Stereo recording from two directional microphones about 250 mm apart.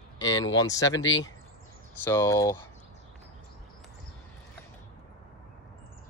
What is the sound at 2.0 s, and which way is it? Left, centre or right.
Speech, centre.